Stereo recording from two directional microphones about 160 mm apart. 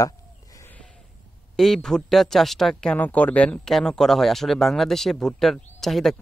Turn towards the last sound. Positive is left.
turn(degrees=0)  # may be behind; listen again after turning